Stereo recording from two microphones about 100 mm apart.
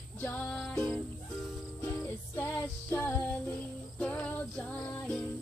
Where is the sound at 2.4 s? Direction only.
20° left (ahead or behind).